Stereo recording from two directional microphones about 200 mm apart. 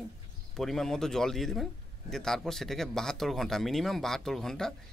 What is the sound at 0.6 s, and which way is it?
A man's voice, centre (ahead or behind).